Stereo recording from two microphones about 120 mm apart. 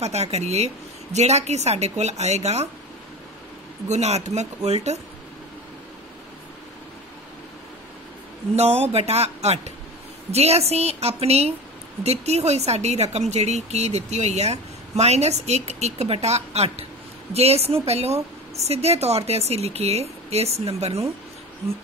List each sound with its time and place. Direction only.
0.0 s speech: 65° right (ahead or behind)
3.9 s speech: 65° right (ahead or behind)
8.5 s speech: 60° right (ahead or behind)